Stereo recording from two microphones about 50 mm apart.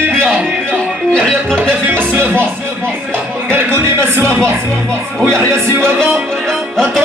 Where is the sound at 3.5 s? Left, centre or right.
Right.